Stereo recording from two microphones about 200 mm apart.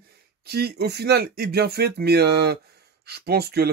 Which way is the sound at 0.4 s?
50° right (ahead or behind).